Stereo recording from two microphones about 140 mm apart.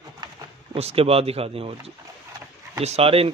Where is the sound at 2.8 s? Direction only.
45° right (ahead or behind).